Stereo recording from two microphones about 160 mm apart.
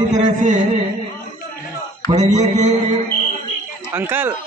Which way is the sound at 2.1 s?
45° right (ahead or behind).